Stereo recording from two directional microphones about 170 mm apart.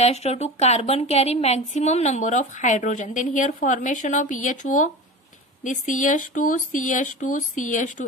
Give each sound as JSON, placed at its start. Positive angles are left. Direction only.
{"t": 0.0, "sound": "a woman's voice", "side_deg": 40}